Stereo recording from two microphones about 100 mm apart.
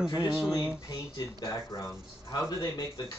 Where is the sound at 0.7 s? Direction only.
35° left (ahead or behind).